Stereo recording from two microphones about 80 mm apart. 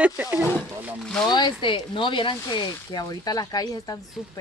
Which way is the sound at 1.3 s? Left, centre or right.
Left.